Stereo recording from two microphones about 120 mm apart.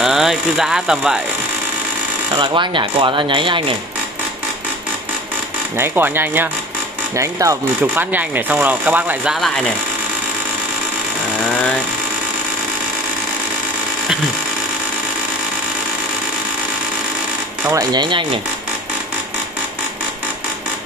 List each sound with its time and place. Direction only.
0.0 s speech: 5° right (ahead or behind)
2.3 s speech: 40° right (ahead or behind)
5.8 s speech: 20° right (ahead or behind)
7.8 s speech: 15° right (ahead or behind)
17.6 s speech: 30° right (ahead or behind)